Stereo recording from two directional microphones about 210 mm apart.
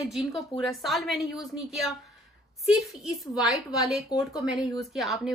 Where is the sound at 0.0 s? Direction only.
Centre (ahead or behind).